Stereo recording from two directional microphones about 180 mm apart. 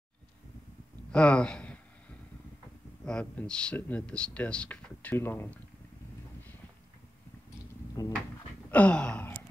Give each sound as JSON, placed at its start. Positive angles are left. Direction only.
{"t": 1.1, "sound": "speech", "side_deg": 5}
{"t": 3.1, "sound": "speech", "side_deg": 5}
{"t": 8.0, "sound": "speech", "side_deg": 20}
{"t": 8.6, "sound": "a sound", "side_deg": 5}